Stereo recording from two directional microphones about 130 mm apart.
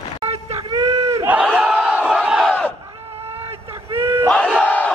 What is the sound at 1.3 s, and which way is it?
Battle cry, 10° right (ahead or behind).